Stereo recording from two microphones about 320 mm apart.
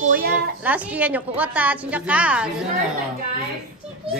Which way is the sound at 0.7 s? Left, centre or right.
Centre.